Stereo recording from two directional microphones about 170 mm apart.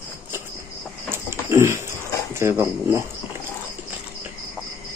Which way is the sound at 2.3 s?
15° right (ahead or behind).